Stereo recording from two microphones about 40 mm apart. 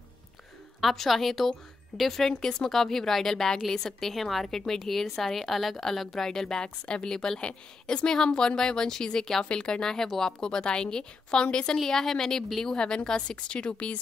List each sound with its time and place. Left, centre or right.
0.7 s a woman's voice: centre
4.1 s a woman's voice: centre
10.4 s a woman's voice: centre
11.8 s a woman's voice: centre
12.7 s a woman's voice: centre